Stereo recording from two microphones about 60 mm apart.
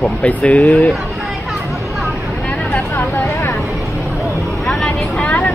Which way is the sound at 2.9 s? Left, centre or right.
Left.